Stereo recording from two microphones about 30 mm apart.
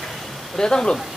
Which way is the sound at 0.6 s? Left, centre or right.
Left.